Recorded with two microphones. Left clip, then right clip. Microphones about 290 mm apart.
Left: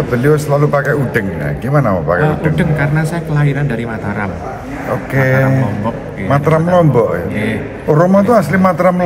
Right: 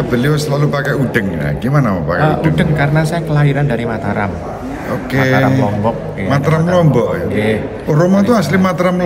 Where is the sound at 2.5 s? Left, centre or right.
Centre.